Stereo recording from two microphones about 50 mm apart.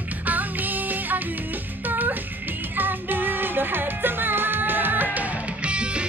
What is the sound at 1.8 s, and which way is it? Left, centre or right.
Music, right.